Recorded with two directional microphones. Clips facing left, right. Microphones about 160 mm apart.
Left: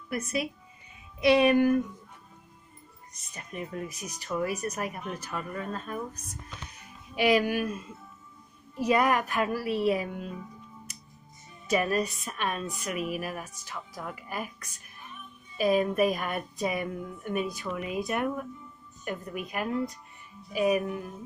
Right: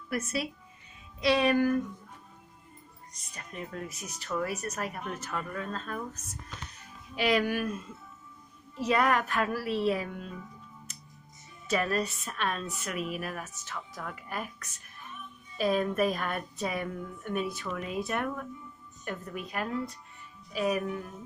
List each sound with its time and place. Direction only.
0.1 s speech: 15° left (ahead or behind)
3.3 s speech: 15° left (ahead or behind)
11.6 s speech: 10° left (ahead or behind)
15.5 s speech: 10° left (ahead or behind)